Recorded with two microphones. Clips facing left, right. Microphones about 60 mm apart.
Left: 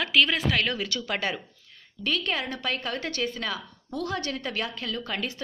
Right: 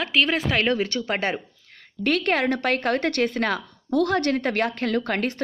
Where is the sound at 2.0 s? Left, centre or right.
Right.